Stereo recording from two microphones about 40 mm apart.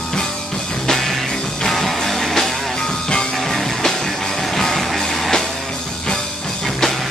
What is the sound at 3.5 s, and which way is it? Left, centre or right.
Music, centre.